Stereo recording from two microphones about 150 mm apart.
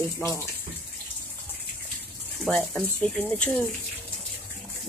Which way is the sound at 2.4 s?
5° left (ahead or behind).